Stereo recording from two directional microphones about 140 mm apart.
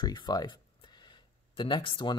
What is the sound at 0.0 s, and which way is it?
Speech, 30° left (ahead or behind).